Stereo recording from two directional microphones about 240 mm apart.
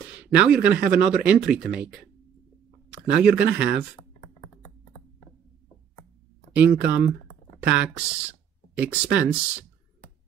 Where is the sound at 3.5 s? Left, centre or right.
Centre.